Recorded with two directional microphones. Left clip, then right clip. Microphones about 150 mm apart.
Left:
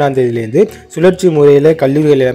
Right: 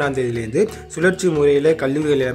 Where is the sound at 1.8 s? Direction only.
25° left (ahead or behind).